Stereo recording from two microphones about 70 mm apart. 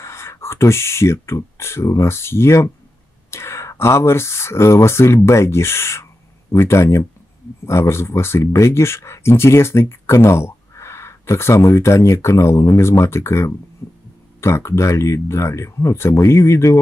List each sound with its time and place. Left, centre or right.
0.0 s speech: left
13.8 s heart sounds: left
14.4 s speech: left